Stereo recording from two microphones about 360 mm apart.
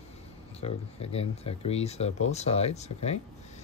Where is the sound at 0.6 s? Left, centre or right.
Centre.